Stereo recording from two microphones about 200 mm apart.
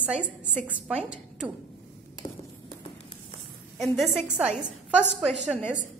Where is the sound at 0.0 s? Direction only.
5° right (ahead or behind).